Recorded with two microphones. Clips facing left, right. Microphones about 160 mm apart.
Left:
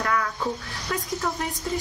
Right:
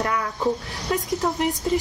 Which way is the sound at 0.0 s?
20° right (ahead or behind).